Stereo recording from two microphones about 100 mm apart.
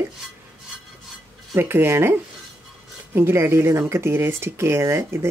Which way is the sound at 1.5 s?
25° right (ahead or behind).